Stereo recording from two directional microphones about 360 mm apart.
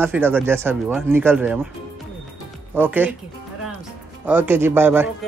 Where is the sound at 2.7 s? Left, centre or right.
Centre.